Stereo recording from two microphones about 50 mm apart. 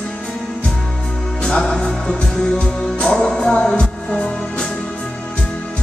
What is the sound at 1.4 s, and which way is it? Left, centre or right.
Music, centre.